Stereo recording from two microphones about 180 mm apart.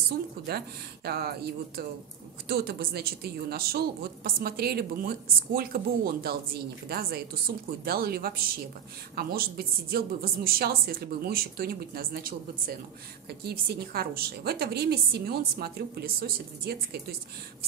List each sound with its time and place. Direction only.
0.5 s speech: 60° right (ahead or behind)